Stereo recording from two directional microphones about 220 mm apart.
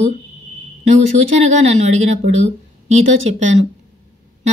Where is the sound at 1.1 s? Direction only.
30° right (ahead or behind).